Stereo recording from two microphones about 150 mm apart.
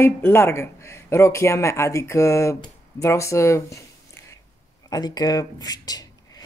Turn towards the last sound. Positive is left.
turn(degrees=25)  # may be behind; listen again after turning